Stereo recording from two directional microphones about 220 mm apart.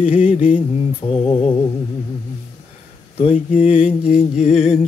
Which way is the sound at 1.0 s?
25° left (ahead or behind).